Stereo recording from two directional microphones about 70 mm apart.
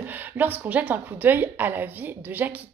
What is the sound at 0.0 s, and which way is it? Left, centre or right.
Speech, right.